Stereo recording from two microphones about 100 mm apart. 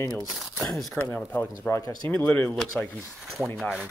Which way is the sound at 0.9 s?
20° left (ahead or behind).